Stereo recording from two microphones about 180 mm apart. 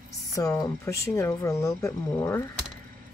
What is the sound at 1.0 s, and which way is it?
Speech, 15° left (ahead or behind).